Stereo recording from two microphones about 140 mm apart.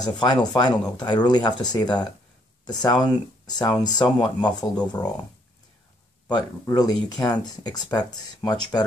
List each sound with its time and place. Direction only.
0.0 s speech: 30° left (ahead or behind)
6.3 s speech: 25° left (ahead or behind)